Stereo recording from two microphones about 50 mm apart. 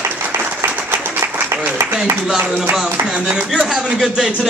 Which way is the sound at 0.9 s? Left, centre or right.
Right.